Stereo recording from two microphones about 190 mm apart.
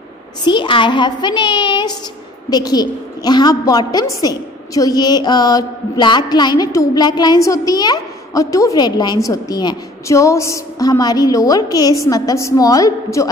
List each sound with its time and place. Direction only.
0.4 s a woman's voice: 25° left (ahead or behind)